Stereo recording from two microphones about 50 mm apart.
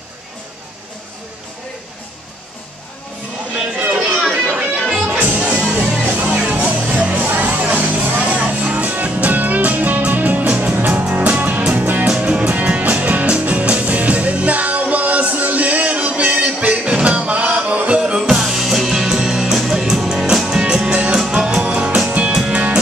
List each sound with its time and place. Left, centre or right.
4.3 s music: right
12.2 s music: right
18.2 s music: centre; by 22.8 s right